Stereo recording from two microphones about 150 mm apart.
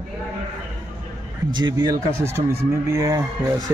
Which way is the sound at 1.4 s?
30° right (ahead or behind).